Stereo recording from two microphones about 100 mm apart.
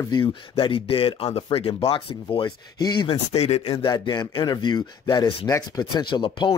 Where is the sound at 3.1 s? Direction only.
90° left.